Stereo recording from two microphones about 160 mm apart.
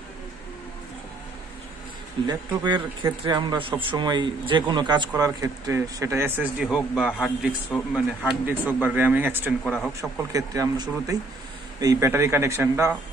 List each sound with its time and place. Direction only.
2.2 s speech: 25° right (ahead or behind)